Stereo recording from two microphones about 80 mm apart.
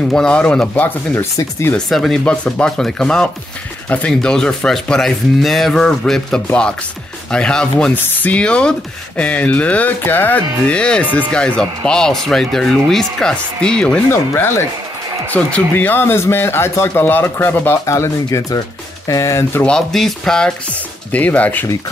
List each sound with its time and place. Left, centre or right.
0.1 s speech: centre
1.1 s speech: left
1.9 s speech: centre
7.9 s speech: left
10.7 s speech: centre
14.1 s speech: left
15.2 s speech: centre; by 19.6 s left
19.6 s speech: centre